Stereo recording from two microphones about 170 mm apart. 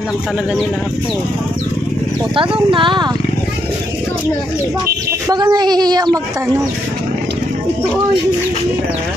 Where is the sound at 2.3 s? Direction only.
30° right (ahead or behind).